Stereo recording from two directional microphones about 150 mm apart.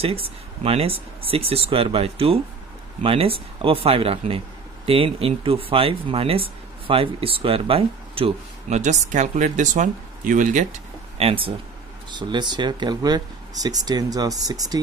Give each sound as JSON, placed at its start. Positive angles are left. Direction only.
{"t": 0.0, "sound": "speech", "side_deg": -40}
{"t": 11.1, "sound": "speech", "side_deg": -40}